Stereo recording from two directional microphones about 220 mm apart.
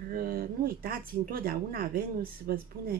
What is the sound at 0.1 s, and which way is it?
Speech, 40° right (ahead or behind).